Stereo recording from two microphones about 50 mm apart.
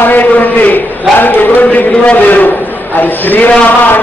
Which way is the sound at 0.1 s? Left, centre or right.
Left.